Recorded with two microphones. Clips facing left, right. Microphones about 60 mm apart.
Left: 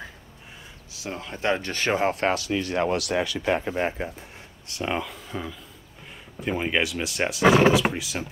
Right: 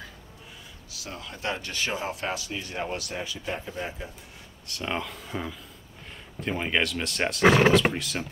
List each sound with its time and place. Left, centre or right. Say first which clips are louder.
0.9 s speech: left 5 dB; left
4.6 s speech: left 3 dB; centre
5.0 s speech: even; centre